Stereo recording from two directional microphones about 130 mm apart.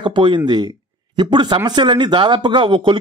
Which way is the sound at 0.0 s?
40° right (ahead or behind).